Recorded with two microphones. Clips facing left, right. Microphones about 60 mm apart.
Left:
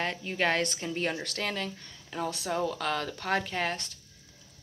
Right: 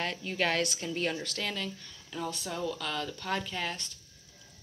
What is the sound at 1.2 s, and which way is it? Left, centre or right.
A woman's voice, left.